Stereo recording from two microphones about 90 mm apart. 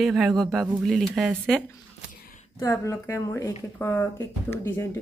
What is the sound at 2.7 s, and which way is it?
Speech, 30° left (ahead or behind).